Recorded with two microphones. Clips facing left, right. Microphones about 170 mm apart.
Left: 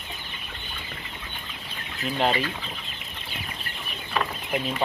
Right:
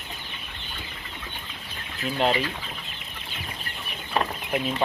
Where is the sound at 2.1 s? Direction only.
5° right (ahead or behind).